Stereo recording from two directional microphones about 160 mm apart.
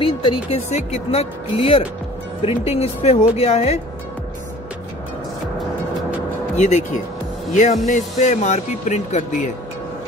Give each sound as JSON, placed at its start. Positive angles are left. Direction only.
{"t": 0.0, "sound": "speech", "side_deg": 35}
{"t": 0.7, "sound": "speech", "side_deg": 45}
{"t": 6.5, "sound": "speech", "side_deg": 45}